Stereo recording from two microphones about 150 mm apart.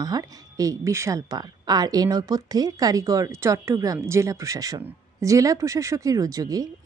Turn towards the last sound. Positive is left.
turn(degrees=-25)  # may be behind; listen again after turning